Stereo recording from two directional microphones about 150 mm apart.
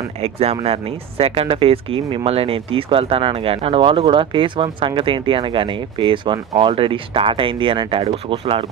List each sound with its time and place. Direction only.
0.2 s speech: 45° right (ahead or behind)